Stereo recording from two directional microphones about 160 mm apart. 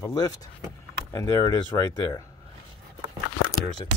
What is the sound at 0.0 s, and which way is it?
Speech, 25° left (ahead or behind).